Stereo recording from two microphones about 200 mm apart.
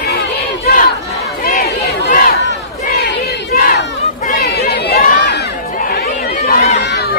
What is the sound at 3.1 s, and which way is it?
Battle cry, 50° left (ahead or behind).